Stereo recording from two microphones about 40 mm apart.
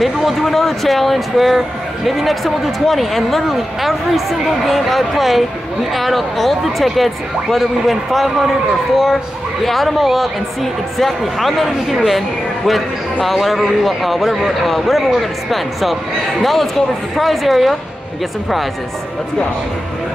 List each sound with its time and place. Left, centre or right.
0.0 s a man's voice: centre
9.6 s a man's voice: centre